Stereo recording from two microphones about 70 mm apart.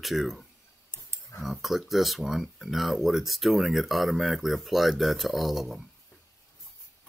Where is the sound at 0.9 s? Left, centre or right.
Left.